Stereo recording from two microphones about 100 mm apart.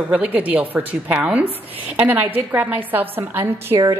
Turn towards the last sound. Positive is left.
turn(degrees=-20)  # may be behind; listen again after turning